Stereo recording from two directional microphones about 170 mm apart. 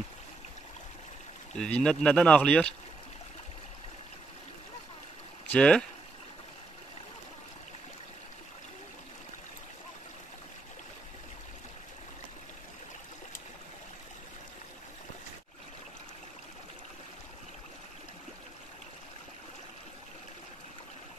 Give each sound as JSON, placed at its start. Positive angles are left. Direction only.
{"t": 1.6, "sound": "speech", "side_deg": 5}
{"t": 5.5, "sound": "speech", "side_deg": 5}